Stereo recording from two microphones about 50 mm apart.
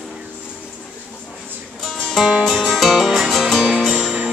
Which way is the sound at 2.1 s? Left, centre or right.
Centre.